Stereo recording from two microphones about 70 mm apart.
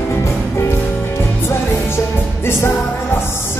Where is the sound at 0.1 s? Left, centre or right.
Left.